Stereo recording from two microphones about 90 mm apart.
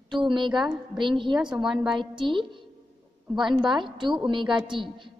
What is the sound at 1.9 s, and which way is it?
A woman's voice, 65° right (ahead or behind).